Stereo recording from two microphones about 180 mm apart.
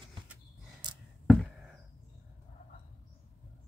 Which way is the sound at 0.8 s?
25° right (ahead or behind).